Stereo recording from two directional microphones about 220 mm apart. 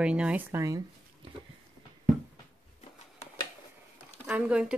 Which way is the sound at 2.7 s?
30° left (ahead or behind).